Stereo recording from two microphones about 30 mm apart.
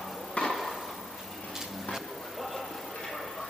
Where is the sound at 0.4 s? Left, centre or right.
Left.